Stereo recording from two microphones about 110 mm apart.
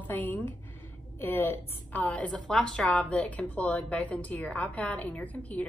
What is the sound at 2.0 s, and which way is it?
A woman's voice, 10° left (ahead or behind).